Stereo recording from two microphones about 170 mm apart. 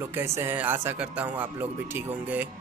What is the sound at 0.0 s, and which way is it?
Speech, 15° right (ahead or behind).